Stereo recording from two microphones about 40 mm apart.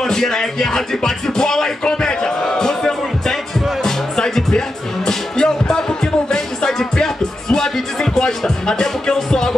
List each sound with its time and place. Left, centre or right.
0.0 s speech: centre
1.9 s music: centre